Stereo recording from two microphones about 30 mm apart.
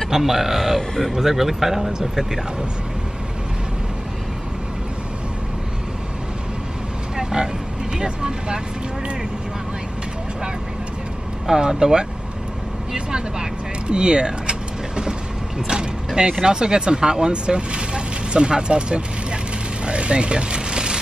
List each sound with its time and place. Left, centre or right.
0.1 s speech: centre
0.7 s speech: centre
1.1 s speech: centre
7.2 s vehicle: centre
8.0 s vehicle: right
11.4 s speech: right
13.8 s vehicle: right
15.6 s speech: right
19.9 s a sound: right